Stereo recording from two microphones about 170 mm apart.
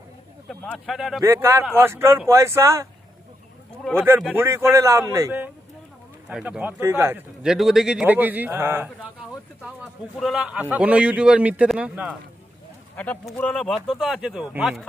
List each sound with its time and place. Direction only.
0.5 s speech: centre (ahead or behind)
1.2 s a man's voice: 15° right (ahead or behind)
4.3 s a man's voice: 15° right (ahead or behind)
7.4 s a man's voice: centre (ahead or behind)
10.1 s a man's voice: 5° right (ahead or behind)
12.9 s a man's voice: 10° left (ahead or behind); by 14.8 s 10° right (ahead or behind)